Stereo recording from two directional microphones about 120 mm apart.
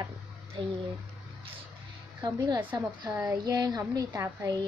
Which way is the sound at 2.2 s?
35° right (ahead or behind).